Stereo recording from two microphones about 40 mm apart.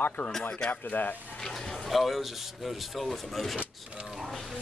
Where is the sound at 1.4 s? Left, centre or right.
Centre.